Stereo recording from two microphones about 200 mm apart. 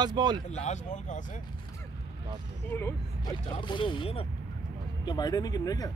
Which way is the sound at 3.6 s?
25° left (ahead or behind).